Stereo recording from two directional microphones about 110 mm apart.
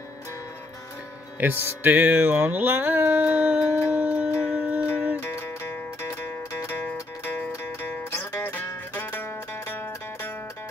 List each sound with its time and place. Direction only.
1.4 s music: 20° right (ahead or behind)
5.2 s music: 25° left (ahead or behind)
8.1 s music: 25° left (ahead or behind)
8.9 s zither: 20° left (ahead or behind)